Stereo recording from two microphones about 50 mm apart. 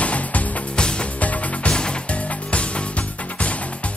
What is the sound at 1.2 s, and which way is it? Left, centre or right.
Music, left.